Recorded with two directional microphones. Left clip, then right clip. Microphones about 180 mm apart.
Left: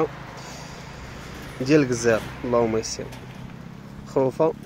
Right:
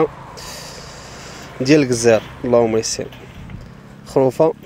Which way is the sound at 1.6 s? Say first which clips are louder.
Right 6 dB; 20° right (ahead or behind).